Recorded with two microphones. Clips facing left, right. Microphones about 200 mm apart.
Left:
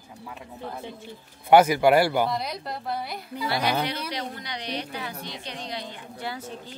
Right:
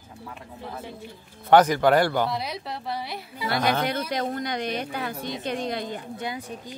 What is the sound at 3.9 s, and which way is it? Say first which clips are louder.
Speech: right 5 dB; 50° right (ahead or behind).